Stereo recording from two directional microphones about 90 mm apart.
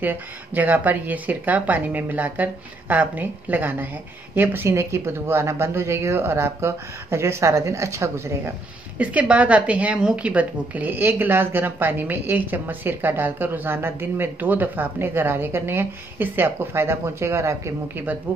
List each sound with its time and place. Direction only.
0.0 s a woman's voice: 20° right (ahead or behind)
8.9 s a woman's voice: 15° right (ahead or behind); by 18.0 s 30° right (ahead or behind)